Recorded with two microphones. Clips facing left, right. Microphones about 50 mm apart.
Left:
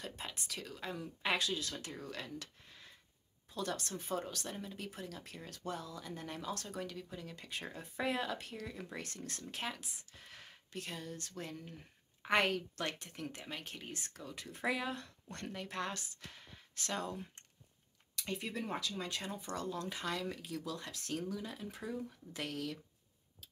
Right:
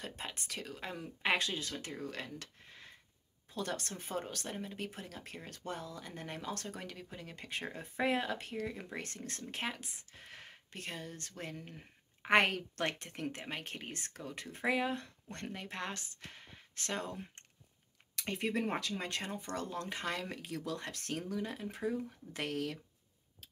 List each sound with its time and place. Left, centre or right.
0.0 s speech: right
2.3 s a sound: right
3.5 s speech: right
14.6 s speech: right
18.1 s speech: right